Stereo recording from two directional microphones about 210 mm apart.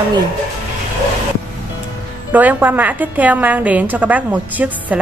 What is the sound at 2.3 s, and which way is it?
A woman's voice, 10° right (ahead or behind).